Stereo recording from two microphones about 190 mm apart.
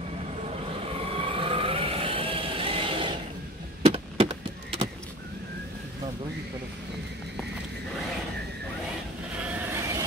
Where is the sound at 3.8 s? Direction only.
30° right (ahead or behind).